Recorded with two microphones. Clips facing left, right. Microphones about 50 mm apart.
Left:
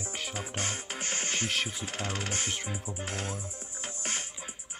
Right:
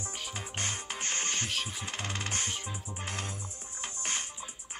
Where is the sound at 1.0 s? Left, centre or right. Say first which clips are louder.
Left 2 dB; right.